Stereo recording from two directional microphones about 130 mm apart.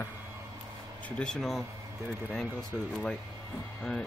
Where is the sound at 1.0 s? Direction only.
10° left (ahead or behind).